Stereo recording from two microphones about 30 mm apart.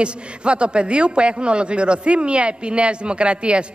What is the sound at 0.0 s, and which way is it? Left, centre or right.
A woman's voice, right.